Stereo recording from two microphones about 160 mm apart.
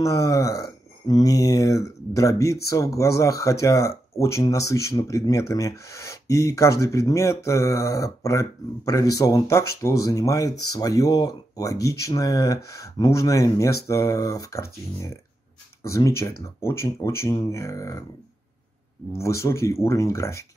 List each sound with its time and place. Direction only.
0.0 s speech: 20° left (ahead or behind)
19.1 s speech: 20° left (ahead or behind)